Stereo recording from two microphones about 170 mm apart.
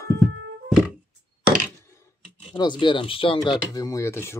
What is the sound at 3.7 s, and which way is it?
Speech, 20° left (ahead or behind).